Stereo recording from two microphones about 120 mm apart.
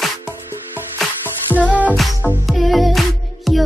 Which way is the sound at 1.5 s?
15° right (ahead or behind).